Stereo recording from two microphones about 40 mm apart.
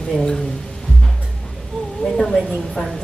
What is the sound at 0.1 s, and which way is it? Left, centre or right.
Speech, left.